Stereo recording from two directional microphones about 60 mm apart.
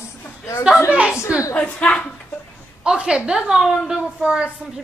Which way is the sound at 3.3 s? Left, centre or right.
Centre.